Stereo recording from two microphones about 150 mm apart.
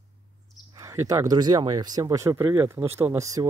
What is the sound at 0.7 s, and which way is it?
Speech, 20° right (ahead or behind).